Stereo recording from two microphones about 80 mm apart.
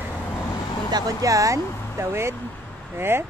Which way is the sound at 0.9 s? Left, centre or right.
Right.